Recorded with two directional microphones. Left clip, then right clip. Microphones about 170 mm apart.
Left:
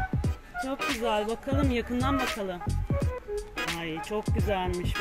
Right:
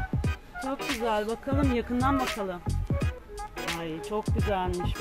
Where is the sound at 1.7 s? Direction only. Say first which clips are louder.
Right 1 dB; 15° right (ahead or behind).